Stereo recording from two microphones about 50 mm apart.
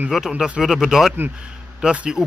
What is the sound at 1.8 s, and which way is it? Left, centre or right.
Speech, centre.